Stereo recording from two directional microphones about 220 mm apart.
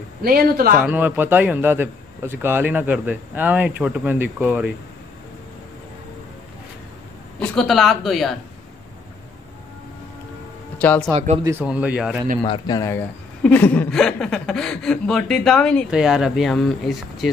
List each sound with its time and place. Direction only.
0.2 s speech: 45° right (ahead or behind)
0.7 s a man's voice: 5° right (ahead or behind)
7.3 s speech: 5° left (ahead or behind)
10.8 s speech: 5° left (ahead or behind)
11.1 s speech: 30° right (ahead or behind)
11.6 s speech: 5° right (ahead or behind)
12.4 s speech: 15° left (ahead or behind); by 17.3 s centre (ahead or behind)